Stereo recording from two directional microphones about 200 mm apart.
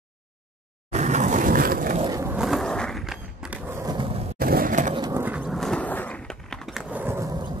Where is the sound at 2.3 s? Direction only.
Centre (ahead or behind).